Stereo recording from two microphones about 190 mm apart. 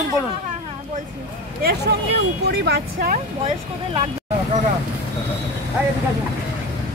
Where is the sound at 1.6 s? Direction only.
60° right (ahead or behind).